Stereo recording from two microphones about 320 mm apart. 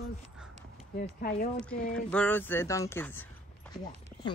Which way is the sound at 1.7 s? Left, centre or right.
Centre.